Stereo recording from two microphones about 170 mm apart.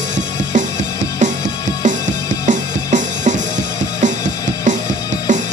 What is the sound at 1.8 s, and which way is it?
Music, 45° right (ahead or behind).